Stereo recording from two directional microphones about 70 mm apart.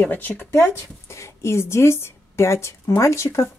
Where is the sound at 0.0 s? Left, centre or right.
Left.